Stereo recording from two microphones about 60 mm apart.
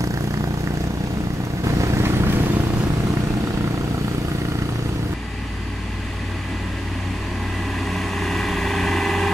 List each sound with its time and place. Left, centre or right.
1.6 s vehicle: right
7.8 s vehicle: centre